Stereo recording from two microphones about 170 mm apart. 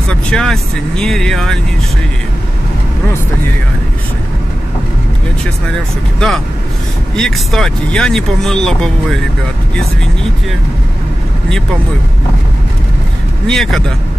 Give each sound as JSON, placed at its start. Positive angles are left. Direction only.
{"t": 0.1, "sound": "speech", "side_deg": 5}
{"t": 6.1, "sound": "speech", "side_deg": 0}
{"t": 13.5, "sound": "speech", "side_deg": 0}